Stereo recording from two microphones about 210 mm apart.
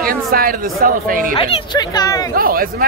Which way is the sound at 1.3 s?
25° left (ahead or behind).